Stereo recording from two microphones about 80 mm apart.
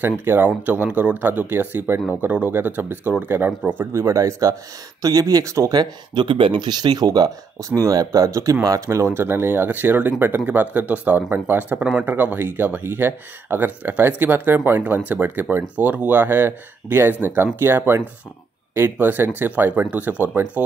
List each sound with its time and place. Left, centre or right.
0.2 s speech: right
3.9 s speech: right
5.8 s speech: right
7.7 s speech: right; by 20.6 s centre